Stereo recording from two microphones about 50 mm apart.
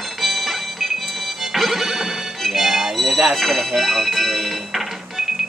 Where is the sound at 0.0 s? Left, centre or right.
Centre.